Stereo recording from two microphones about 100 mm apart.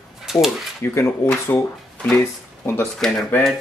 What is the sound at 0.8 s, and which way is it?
Speech, 25° left (ahead or behind).